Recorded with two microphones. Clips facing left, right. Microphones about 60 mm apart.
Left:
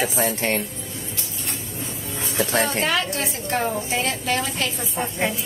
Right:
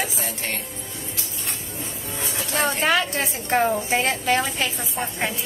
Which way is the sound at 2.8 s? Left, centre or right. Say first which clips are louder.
Right 2 dB; right.